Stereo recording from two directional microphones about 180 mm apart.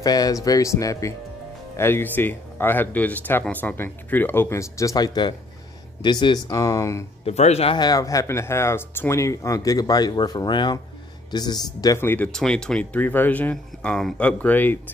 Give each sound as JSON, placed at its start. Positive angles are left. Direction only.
{"t": 0.0, "sound": "speech", "side_deg": 20}
{"t": 7.2, "sound": "speech", "side_deg": 35}